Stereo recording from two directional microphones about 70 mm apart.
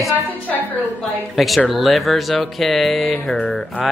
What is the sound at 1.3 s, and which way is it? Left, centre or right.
Speech, centre.